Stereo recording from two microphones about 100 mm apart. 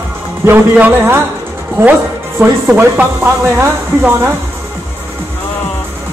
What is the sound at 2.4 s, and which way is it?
Speech, 20° right (ahead or behind).